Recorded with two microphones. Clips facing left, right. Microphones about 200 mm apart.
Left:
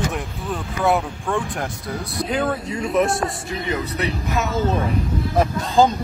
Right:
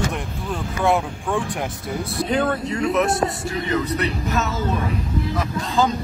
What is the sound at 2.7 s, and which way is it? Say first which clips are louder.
Speech: left 1 dB; 25° left (ahead or behind).